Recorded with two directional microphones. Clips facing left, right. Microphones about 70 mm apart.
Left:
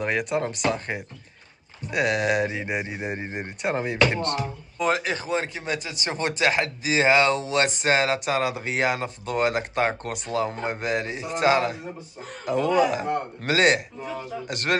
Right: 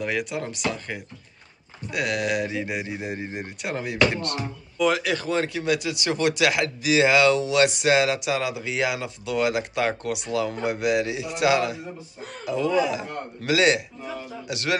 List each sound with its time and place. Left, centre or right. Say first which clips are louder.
0.0 s speech: left 3 dB; left
12.4 s a man's voice: left 2 dB; left